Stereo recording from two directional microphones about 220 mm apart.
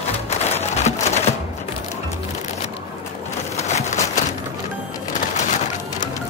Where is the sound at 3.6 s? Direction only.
30° left (ahead or behind).